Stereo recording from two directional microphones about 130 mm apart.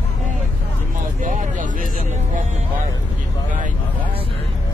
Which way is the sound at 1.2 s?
75° right (ahead or behind).